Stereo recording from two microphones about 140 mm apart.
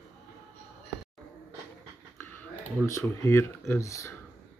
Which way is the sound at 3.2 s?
15° left (ahead or behind).